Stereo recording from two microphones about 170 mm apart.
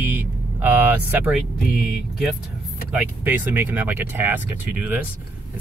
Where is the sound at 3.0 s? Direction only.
10° right (ahead or behind).